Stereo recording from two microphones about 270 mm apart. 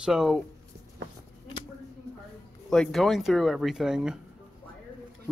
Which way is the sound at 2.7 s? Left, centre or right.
Centre.